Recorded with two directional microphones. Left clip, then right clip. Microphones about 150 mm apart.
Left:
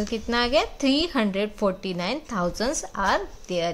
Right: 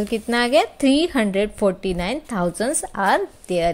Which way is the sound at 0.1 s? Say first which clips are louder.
Right 5 dB; 30° right (ahead or behind).